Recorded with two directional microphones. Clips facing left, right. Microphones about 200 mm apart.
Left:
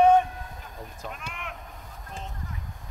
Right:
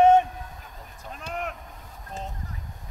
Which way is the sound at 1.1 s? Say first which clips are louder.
Right 7 dB; 40° right (ahead or behind).